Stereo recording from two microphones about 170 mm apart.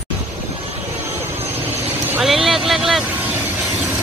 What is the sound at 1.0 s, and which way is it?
Vehicle, 15° right (ahead or behind).